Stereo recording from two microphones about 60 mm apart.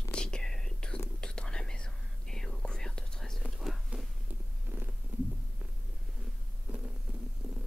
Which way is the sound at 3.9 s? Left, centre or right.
Right.